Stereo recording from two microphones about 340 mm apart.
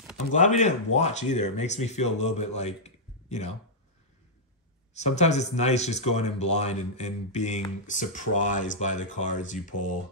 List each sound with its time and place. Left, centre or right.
0.3 s speech: left
4.9 s speech: centre